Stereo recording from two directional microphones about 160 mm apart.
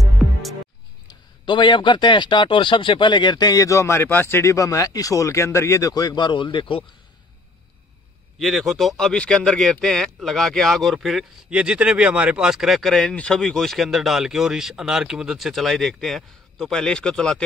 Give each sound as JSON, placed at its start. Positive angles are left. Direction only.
{"t": 0.0, "sound": "music", "side_deg": 0}
{"t": 1.0, "sound": "a man's voice", "side_deg": 30}
{"t": 8.4, "sound": "speech", "side_deg": 0}